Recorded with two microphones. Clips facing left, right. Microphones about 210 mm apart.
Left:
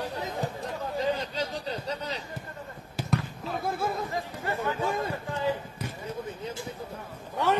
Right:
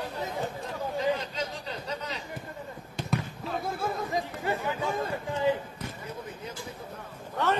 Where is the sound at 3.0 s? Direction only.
Centre (ahead or behind).